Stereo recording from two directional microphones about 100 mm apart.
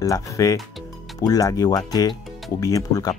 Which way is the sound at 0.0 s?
35° left (ahead or behind).